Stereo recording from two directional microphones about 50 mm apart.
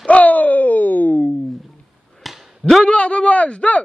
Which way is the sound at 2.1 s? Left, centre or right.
Centre.